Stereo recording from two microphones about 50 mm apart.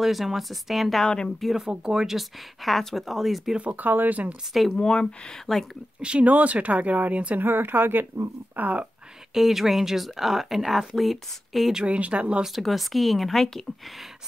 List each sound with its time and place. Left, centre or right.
0.0 s speech: centre
1.0 s speech: centre
1.4 s speech: centre
3.5 s speech: right
4.7 s speech: centre
5.5 s speech: centre
5.9 s speech: right
6.2 s speech: right
7.4 s speech: right
8.5 s speech: right
9.3 s speech: centre
11.8 s speech: right
12.5 s speech: centre